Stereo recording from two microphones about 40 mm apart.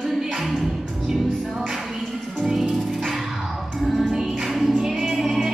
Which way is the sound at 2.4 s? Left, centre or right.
Centre.